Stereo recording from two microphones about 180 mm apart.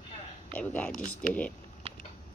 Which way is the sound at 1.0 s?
50° left (ahead or behind).